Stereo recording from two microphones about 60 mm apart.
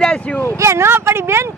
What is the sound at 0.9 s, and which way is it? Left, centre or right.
Speech, right.